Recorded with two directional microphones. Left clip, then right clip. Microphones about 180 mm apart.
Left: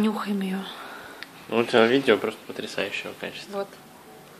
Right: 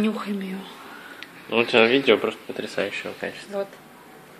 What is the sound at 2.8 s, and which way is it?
Speech, 20° right (ahead or behind).